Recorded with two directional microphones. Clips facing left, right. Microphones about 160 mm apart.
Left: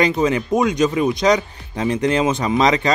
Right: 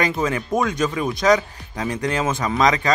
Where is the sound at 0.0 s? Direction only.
20° left (ahead or behind).